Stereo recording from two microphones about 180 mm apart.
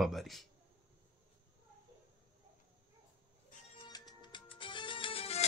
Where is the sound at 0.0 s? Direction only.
Centre (ahead or behind).